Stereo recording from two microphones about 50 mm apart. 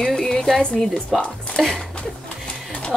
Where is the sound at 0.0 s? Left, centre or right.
Centre.